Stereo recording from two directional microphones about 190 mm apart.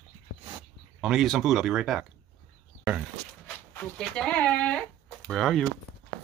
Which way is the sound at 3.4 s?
10° left (ahead or behind).